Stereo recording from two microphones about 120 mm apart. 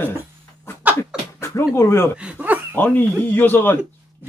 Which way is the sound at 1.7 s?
20° left (ahead or behind).